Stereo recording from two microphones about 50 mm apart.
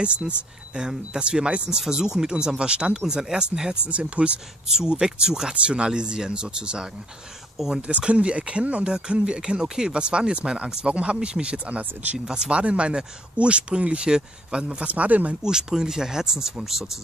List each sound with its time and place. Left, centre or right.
0.0 s speech: right
7.8 s speech: right
15.4 s speech: centre